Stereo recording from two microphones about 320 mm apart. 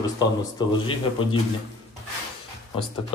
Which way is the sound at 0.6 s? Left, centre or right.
Centre.